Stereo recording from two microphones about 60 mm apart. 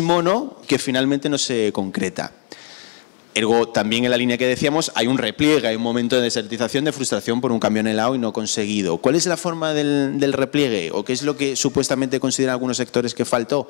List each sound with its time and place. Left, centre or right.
0.0 s speech: centre
3.3 s speech: centre